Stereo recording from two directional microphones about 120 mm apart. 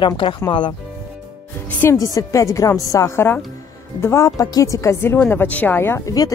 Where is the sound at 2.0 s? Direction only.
30° left (ahead or behind).